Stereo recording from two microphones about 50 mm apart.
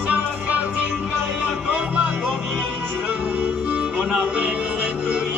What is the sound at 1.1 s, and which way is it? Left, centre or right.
Music, centre.